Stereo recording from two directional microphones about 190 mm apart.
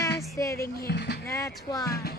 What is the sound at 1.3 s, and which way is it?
Speech, 15° left (ahead or behind).